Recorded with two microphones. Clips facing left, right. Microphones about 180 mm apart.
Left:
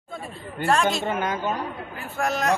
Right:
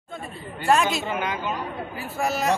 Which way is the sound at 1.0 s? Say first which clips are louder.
Left 2 dB; 45° left (ahead or behind).